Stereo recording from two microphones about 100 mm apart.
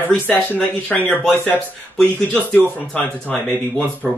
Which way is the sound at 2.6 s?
15° left (ahead or behind).